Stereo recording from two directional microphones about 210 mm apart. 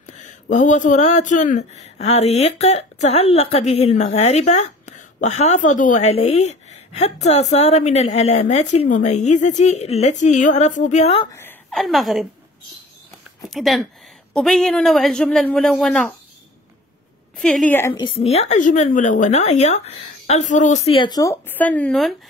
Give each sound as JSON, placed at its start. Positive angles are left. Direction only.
{"t": 0.0, "sound": "speech", "side_deg": 35}
{"t": 11.3, "sound": "a sound", "side_deg": 10}
{"t": 11.8, "sound": "speech", "side_deg": 0}
{"t": 13.5, "sound": "speech", "side_deg": 0}
{"t": 17.4, "sound": "a woman's voice", "side_deg": 5}